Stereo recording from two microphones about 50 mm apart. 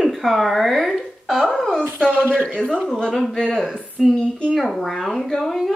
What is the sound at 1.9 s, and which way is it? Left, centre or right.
Speech, right.